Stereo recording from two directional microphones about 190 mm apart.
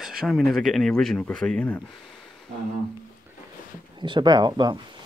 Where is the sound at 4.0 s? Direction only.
25° right (ahead or behind).